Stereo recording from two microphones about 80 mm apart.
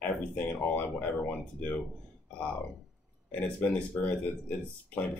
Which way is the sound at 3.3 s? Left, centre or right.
Centre.